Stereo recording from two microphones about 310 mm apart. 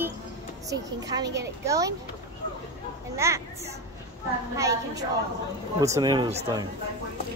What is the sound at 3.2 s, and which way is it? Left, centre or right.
Speech, centre.